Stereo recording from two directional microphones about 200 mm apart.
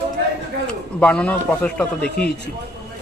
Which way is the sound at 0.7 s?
5° left (ahead or behind).